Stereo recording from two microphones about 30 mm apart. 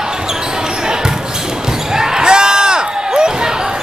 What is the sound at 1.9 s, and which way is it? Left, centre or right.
Basketball bounce, centre.